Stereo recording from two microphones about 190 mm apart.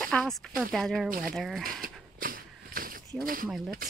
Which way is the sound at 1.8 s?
50° right (ahead or behind).